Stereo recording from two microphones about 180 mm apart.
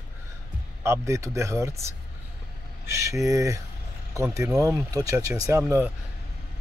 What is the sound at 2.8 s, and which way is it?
Speech, 15° right (ahead or behind).